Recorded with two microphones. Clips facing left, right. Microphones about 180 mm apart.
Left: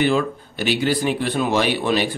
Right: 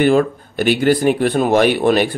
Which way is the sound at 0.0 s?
50° right (ahead or behind).